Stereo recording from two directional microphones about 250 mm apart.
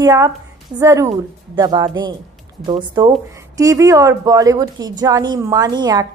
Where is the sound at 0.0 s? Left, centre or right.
Centre.